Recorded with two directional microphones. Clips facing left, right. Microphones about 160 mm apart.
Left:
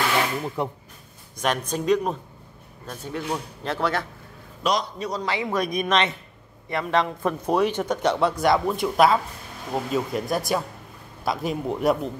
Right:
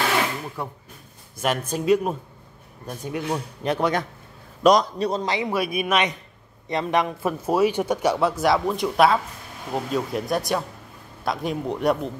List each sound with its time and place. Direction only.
0.6 s speech: 20° left (ahead or behind)
1.3 s speech: 5° right (ahead or behind)
4.6 s a man's voice: 45° right (ahead or behind)
5.2 s speech: 20° right (ahead or behind)
5.6 s speech: 10° right (ahead or behind)